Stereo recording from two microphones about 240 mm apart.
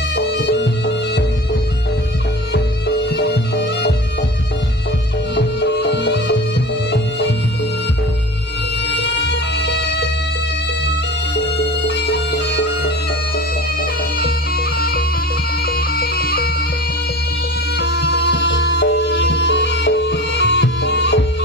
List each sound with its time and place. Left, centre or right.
0.2 s music: left
2.5 s music: left
5.3 s music: left
9.0 s music: left
11.3 s music: left
16.0 s music: left
17.7 s music: left